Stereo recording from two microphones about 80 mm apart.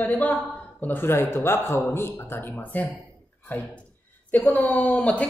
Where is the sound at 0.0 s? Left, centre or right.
Centre.